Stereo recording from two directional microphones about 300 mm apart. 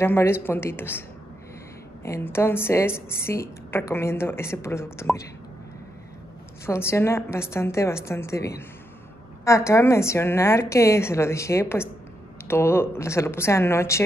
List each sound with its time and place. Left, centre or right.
0.0 s a woman's voice: centre
2.0 s a woman's voice: centre
6.6 s a woman's voice: centre